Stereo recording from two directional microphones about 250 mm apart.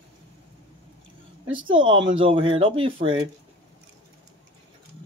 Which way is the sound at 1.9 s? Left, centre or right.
Right.